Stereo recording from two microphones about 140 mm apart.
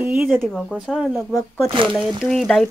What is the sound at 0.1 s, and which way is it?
Speech, centre (ahead or behind).